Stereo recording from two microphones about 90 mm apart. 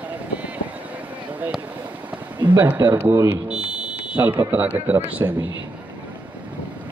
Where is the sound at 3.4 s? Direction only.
10° right (ahead or behind).